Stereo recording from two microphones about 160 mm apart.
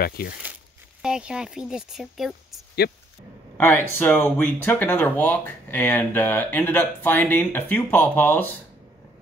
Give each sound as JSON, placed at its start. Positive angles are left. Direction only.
{"t": 0.0, "sound": "speech", "side_deg": 70}
{"t": 1.0, "sound": "speech", "side_deg": -5}
{"t": 2.8, "sound": "speech", "side_deg": 75}
{"t": 3.5, "sound": "speech", "side_deg": 10}